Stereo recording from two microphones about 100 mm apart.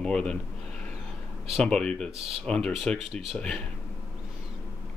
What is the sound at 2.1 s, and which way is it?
Speech, 80° right.